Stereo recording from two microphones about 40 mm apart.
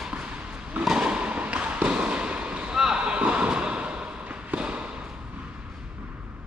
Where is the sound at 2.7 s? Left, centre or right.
Right.